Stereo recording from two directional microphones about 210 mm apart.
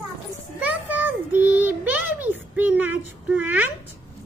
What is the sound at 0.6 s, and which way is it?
Child singing, 5° right (ahead or behind).